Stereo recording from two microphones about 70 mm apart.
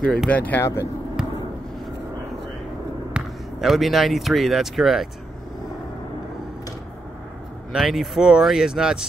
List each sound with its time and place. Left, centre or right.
0.3 s speech: left
0.6 s speech: left
1.2 s basketball bounce: centre
3.1 s basketball bounce: centre
3.7 s speech: centre
7.7 s speech: centre